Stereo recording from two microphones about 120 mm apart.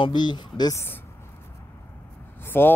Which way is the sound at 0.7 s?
20° left (ahead or behind).